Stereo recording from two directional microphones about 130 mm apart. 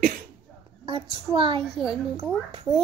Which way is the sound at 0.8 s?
45° right (ahead or behind).